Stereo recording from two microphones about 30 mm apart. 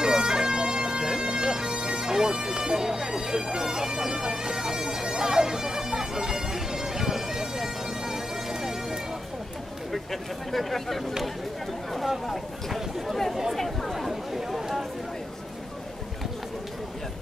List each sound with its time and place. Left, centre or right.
0.0 s bagpipes: centre
10.5 s speech: centre
13.9 s a sound: centre